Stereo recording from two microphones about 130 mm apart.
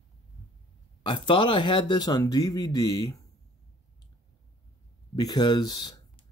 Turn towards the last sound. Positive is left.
turn(degrees=30)  # may be behind; listen again after turning